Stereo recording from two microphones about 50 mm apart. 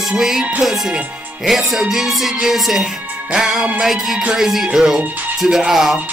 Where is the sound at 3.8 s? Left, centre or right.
Centre.